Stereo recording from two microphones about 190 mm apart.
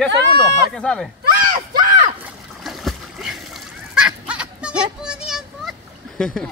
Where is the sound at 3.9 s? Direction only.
5° right (ahead or behind).